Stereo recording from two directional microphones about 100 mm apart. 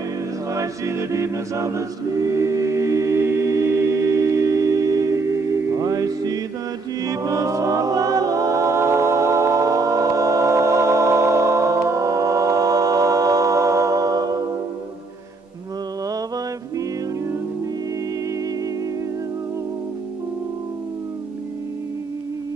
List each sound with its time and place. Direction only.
0.5 s a capella: 30° right (ahead or behind)